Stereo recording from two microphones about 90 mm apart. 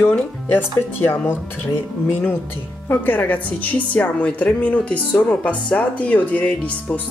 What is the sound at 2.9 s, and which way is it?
A woman's voice, 20° left (ahead or behind).